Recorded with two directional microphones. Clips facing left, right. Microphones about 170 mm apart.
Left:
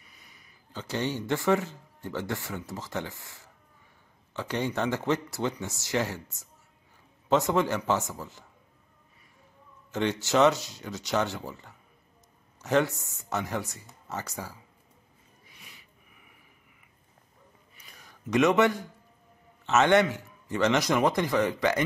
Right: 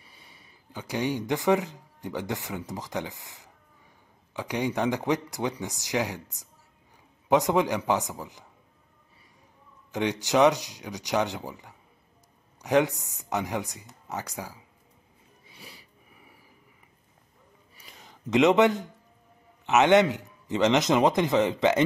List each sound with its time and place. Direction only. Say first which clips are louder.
0.0 s a sound: right 3 dB; 30° right (ahead or behind)
0.7 s speech: right 2 dB; 10° right (ahead or behind)
9.8 s speech: right 1 dB; 15° right (ahead or behind)
15.4 s gasp: right 7 dB; 30° right (ahead or behind)
17.9 s a man's voice: right 2 dB; 20° right (ahead or behind)